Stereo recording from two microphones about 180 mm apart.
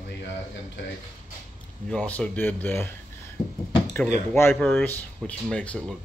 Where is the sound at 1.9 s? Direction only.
5° left (ahead or behind).